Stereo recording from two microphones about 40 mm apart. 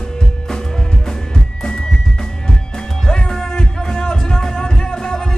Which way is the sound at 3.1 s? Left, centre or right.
Centre.